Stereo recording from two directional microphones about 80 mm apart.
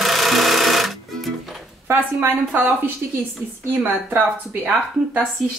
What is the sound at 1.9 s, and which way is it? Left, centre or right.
A woman's voice, right.